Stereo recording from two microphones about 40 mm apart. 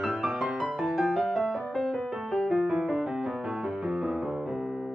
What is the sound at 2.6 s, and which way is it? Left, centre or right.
Music, centre.